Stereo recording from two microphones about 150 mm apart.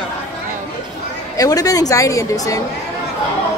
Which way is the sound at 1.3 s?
25° left (ahead or behind).